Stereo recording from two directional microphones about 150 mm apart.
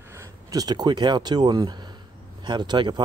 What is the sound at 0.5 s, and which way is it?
Speech, 25° right (ahead or behind).